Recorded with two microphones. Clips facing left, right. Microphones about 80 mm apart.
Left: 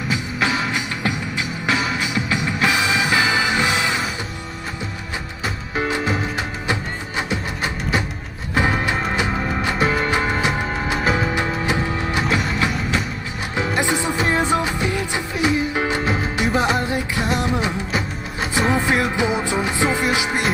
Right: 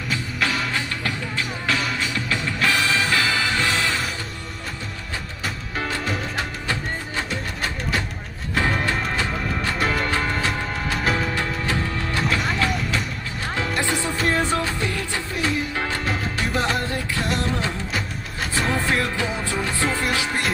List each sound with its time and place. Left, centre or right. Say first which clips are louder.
0.1 s music: left 3 dB; centre
5.8 s music: left 5 dB; centre
9.8 s music: left 4 dB; centre
10.0 s music: left 3 dB; centre
13.6 s music: left 4 dB; centre